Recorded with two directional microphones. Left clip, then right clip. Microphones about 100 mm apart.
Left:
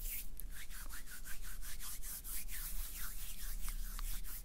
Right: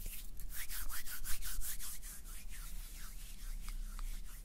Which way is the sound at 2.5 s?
35° left (ahead or behind).